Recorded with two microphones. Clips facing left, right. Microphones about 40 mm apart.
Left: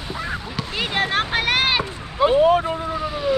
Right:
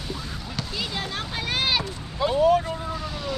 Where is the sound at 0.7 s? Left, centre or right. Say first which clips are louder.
Left 10 dB; left.